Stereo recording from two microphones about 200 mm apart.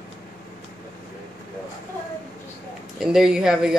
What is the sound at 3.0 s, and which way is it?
Speech, centre (ahead or behind).